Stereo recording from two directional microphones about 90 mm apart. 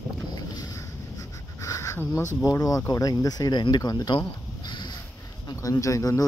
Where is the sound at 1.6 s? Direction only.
35° left (ahead or behind).